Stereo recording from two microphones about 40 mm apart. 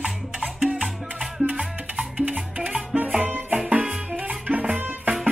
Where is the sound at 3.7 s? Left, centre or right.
Right.